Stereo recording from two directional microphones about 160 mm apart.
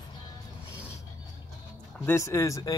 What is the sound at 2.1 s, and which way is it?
Speech, 20° left (ahead or behind).